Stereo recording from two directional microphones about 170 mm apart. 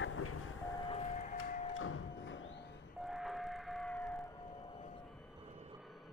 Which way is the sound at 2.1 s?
90° left.